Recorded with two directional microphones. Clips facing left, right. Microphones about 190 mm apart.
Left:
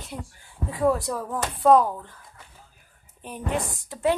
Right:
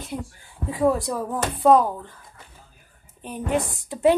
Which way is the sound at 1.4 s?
10° right (ahead or behind).